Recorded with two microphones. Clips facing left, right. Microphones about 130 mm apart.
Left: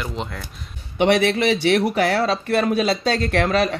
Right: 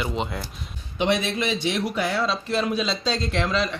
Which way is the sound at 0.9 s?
70° left (ahead or behind).